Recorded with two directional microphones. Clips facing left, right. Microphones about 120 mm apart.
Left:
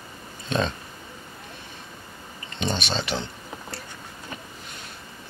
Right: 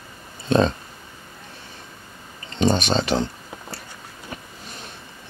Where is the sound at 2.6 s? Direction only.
40° right (ahead or behind).